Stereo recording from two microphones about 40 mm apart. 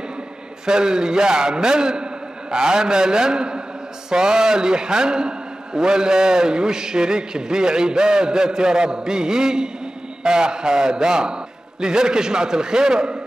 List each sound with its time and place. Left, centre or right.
0.7 s a man's voice: centre